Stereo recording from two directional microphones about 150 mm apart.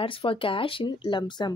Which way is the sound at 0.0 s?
35° left (ahead or behind).